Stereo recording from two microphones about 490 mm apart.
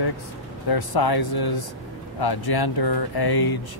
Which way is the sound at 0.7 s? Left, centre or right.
Left.